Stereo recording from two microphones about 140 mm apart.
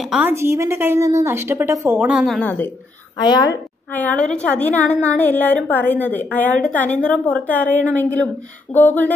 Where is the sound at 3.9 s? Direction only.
10° left (ahead or behind).